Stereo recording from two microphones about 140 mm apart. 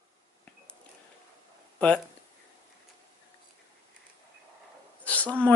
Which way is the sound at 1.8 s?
10° left (ahead or behind).